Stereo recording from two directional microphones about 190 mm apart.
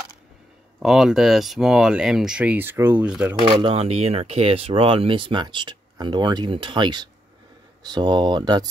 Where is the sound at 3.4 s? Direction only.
25° right (ahead or behind).